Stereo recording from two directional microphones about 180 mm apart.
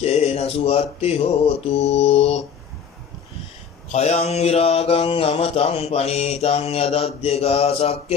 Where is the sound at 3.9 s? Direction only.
35° left (ahead or behind).